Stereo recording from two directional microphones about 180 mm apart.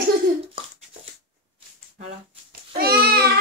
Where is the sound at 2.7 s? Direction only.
60° right (ahead or behind).